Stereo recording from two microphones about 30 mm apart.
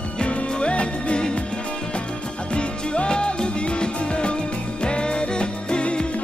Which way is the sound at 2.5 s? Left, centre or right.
Left.